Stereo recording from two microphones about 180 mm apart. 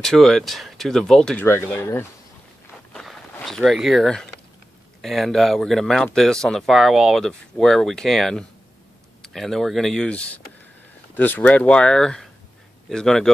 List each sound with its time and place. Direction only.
0.0 s speech: centre (ahead or behind)
2.9 s a sound: centre (ahead or behind)
5.0 s speech: centre (ahead or behind)